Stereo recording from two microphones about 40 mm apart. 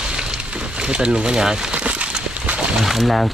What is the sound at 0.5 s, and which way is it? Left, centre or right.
Speech, right.